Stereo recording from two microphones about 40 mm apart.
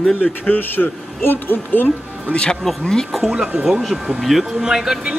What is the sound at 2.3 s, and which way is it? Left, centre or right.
Speech, left.